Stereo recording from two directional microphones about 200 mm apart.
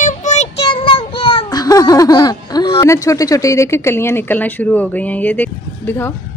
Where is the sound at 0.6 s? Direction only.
25° left (ahead or behind); by 6.1 s 10° left (ahead or behind).